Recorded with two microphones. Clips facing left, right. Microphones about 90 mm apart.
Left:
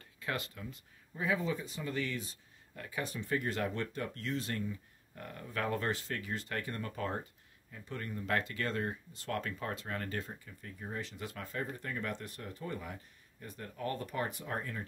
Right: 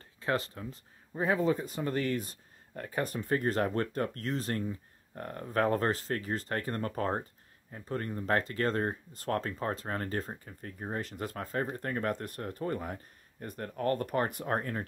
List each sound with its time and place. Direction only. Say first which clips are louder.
0.2 s speech: right 7 dB; 35° right (ahead or behind); by 14.9 s 50° right (ahead or behind)